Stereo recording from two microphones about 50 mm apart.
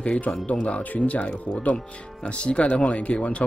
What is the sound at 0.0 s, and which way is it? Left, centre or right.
A man's voice, left.